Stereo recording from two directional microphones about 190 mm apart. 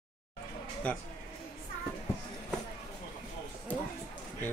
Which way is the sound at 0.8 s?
5° left (ahead or behind).